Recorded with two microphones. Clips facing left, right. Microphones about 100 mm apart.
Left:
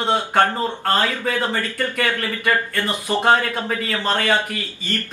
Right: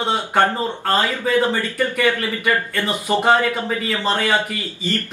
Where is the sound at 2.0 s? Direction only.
15° right (ahead or behind).